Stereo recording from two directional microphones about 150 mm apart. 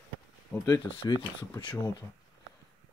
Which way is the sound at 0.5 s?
20° left (ahead or behind).